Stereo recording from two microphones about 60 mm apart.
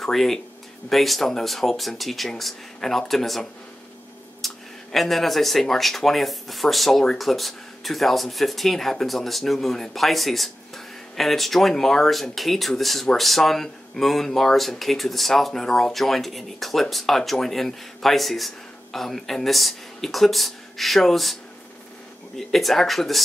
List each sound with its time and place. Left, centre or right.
0.0 s speech: centre
22.4 s speech: centre